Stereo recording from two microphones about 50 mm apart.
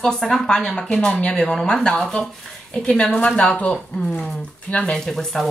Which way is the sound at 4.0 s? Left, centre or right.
Centre.